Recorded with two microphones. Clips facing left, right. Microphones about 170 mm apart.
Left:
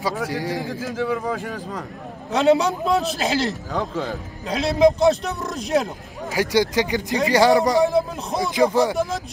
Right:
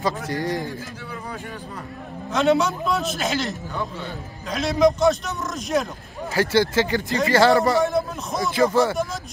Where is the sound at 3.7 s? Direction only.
90° left.